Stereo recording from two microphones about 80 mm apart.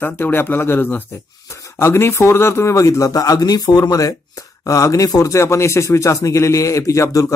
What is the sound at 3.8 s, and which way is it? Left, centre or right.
Speech, left.